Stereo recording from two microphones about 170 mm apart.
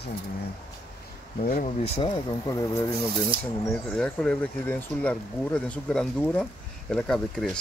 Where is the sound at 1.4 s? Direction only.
55° left (ahead or behind).